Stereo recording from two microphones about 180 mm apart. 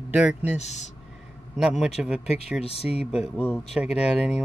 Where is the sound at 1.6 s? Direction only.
5° right (ahead or behind).